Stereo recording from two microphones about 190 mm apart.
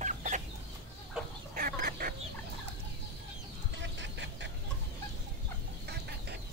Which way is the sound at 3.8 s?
70° right (ahead or behind).